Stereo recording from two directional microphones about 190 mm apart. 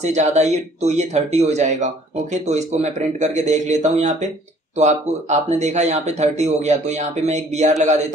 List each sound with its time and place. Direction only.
0.0 s speech: 35° right (ahead or behind)